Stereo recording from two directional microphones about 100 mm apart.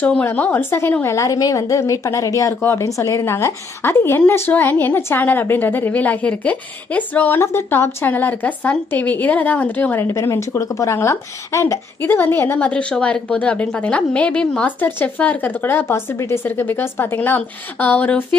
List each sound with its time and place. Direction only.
0.0 s a woman's voice: 15° left (ahead or behind)
10.0 s speech: 30° left (ahead or behind)